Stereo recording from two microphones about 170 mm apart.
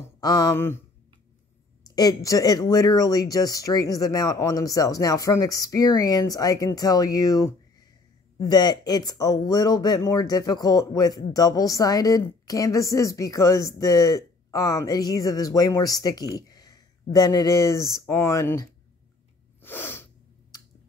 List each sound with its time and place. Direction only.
0.0 s speech: 20° left (ahead or behind)
1.9 s speech: 20° left (ahead or behind)
16.3 s a sound: 20° left (ahead or behind)
17.1 s speech: 20° left (ahead or behind)
19.6 s sneeze: 10° left (ahead or behind)